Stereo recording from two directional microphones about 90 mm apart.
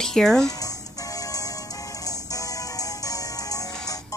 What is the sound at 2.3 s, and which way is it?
Music, 40° left (ahead or behind).